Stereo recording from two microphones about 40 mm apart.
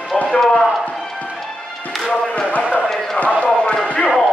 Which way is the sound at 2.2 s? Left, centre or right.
Left.